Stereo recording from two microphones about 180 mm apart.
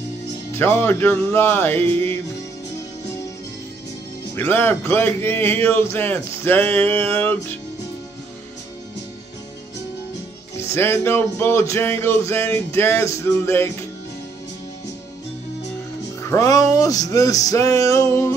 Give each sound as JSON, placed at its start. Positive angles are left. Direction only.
{"t": 0.5, "sound": "music", "side_deg": 10}
{"t": 4.4, "sound": "music", "side_deg": 10}
{"t": 10.7, "sound": "music", "side_deg": 15}
{"t": 16.2, "sound": "music", "side_deg": 15}